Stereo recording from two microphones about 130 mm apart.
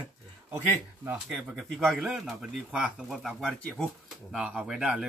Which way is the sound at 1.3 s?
Centre (ahead or behind).